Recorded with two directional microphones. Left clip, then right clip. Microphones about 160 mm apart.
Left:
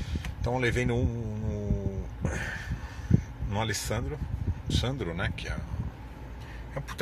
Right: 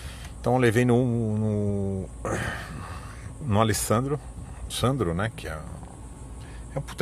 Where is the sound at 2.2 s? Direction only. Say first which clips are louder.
Right 4 dB; 80° right.